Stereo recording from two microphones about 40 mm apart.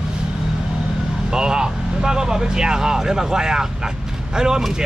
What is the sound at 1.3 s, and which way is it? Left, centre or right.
Speech, centre.